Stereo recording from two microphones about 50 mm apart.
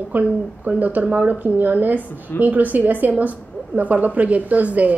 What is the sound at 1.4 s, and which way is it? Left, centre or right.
A woman's voice, right.